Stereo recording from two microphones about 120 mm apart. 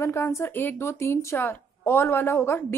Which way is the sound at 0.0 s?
25° left (ahead or behind).